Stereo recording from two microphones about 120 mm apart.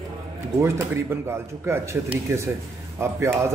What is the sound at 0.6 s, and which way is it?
A man's voice, 20° right (ahead or behind).